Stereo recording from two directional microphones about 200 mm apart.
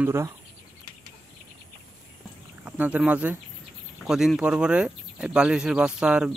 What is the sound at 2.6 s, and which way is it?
Speech, 5° right (ahead or behind).